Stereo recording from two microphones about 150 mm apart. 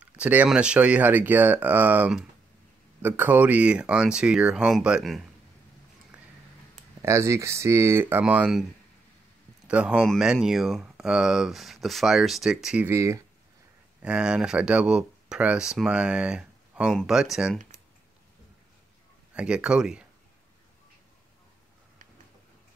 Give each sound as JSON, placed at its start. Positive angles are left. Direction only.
{"t": 0.0, "sound": "speech", "side_deg": -10}
{"t": 6.1, "sound": "a sound", "side_deg": -5}
{"t": 7.0, "sound": "speech", "side_deg": -20}
{"t": 9.7, "sound": "speech", "side_deg": -5}
{"t": 12.8, "sound": "speech", "side_deg": -20}
{"t": 14.0, "sound": "speech", "side_deg": -5}
{"t": 19.3, "sound": "speech", "side_deg": -5}